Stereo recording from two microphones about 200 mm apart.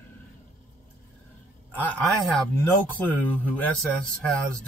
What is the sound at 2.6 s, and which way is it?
Speech, 10° left (ahead or behind).